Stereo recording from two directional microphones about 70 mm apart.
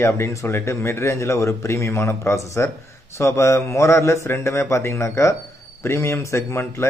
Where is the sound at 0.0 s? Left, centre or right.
Left.